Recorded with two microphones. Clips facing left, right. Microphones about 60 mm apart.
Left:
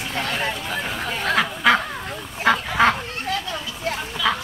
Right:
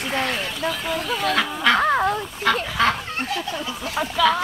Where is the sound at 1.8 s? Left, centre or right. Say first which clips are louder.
Right 11 dB; right.